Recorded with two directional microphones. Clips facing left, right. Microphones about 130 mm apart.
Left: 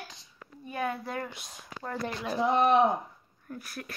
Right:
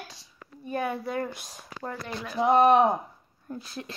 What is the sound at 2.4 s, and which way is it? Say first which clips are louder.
Speech: right 4 dB; 55° right (ahead or behind).